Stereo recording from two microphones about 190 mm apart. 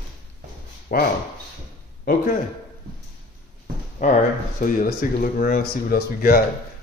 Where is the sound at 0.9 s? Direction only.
50° left (ahead or behind).